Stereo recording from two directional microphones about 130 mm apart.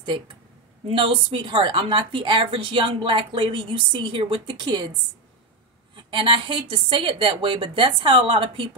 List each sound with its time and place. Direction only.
0.8 s speech: 45° right (ahead or behind)
5.9 s speech: 40° right (ahead or behind)